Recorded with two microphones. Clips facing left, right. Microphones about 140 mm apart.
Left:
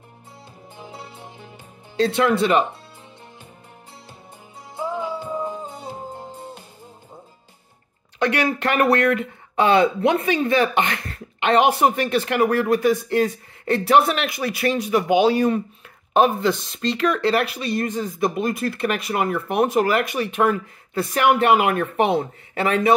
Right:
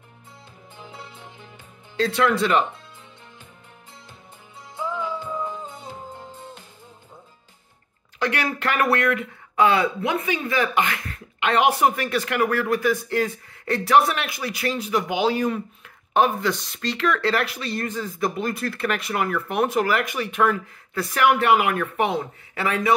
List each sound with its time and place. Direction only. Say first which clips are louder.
2.0 s speech: left 2 dB; 20° left (ahead or behind)
4.9 s music: left 2 dB; 40° left (ahead or behind)
6.0 s music: left 4 dB; 10° left (ahead or behind)
8.3 s speech: left 4 dB; 25° left (ahead or behind)